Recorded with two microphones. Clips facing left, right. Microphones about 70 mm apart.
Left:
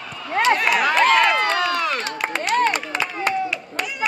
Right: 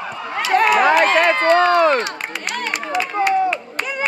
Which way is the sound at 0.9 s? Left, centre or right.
Right.